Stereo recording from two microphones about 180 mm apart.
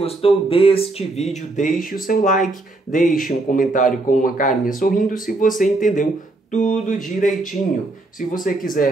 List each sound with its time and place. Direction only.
0.0 s speech: 30° left (ahead or behind)
8.5 s speech: 50° left (ahead or behind)